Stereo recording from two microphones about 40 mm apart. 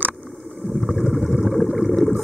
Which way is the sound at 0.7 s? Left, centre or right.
Centre.